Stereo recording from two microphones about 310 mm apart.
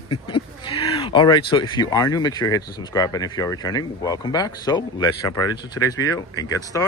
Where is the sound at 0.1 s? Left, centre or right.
Centre.